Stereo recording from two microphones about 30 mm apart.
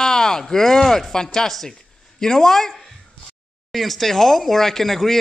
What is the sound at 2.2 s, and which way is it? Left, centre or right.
Speech, centre.